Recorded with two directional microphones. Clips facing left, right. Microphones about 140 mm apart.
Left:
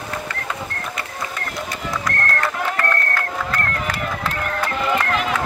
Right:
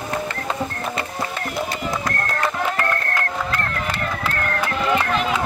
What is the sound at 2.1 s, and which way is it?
Music, 25° right (ahead or behind).